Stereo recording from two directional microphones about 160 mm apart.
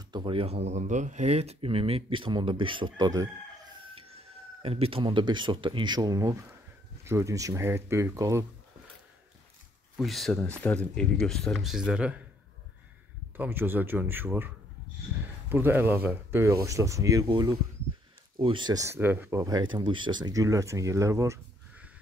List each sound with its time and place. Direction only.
0.1 s speech: 30° right (ahead or behind)
4.6 s speech: 35° right (ahead or behind); by 8.5 s 20° right (ahead or behind)
9.9 s speech: centre (ahead or behind)
13.4 s speech: 15° right (ahead or behind)
15.5 s speech: 15° right (ahead or behind)
19.4 s speech: 25° right (ahead or behind)